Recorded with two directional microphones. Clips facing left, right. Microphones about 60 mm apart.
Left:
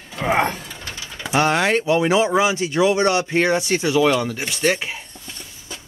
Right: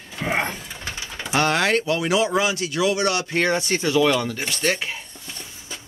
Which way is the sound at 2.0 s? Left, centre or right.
Left.